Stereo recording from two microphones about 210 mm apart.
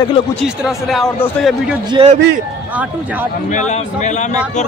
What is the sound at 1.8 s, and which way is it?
Speech, 20° right (ahead or behind).